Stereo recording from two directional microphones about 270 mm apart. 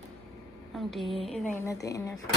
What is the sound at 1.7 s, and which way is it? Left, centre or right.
Speech, centre.